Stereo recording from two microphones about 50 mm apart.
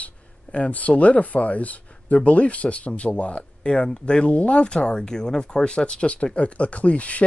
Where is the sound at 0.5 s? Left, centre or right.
Left.